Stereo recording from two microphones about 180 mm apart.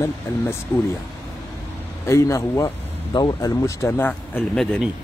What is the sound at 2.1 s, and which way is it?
Speech, 15° left (ahead or behind).